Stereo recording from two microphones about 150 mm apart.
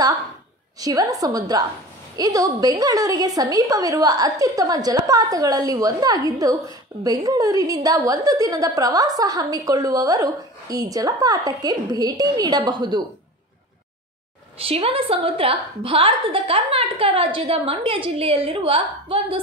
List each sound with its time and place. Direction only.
0.7 s a woman's voice: 25° right (ahead or behind)
14.6 s a woman's voice: 40° right (ahead or behind)